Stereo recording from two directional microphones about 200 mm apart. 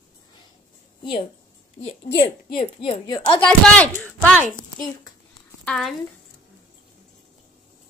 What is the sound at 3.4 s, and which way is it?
Speech, 5° left (ahead or behind).